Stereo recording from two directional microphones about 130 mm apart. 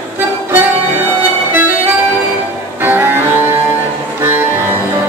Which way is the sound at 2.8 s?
15° right (ahead or behind).